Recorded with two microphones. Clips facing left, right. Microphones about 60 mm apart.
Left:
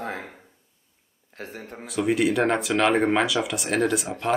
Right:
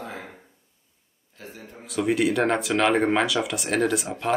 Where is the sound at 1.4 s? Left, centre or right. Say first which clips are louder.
Left 4 dB; left.